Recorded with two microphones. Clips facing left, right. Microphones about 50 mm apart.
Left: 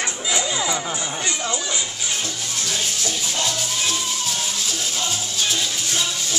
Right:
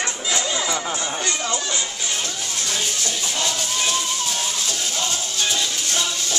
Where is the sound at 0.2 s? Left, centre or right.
Centre.